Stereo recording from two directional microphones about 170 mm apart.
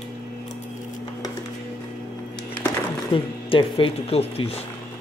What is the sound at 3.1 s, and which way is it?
Speech, 30° left (ahead or behind).